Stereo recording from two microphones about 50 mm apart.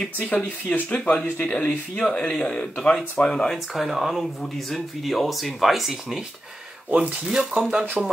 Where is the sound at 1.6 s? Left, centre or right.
Centre.